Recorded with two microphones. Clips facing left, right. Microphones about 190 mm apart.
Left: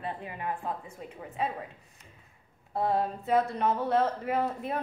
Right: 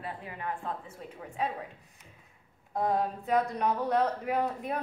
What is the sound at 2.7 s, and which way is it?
Speech, centre (ahead or behind).